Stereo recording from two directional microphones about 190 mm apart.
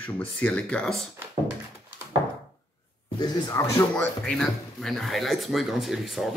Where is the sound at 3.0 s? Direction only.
20° left (ahead or behind).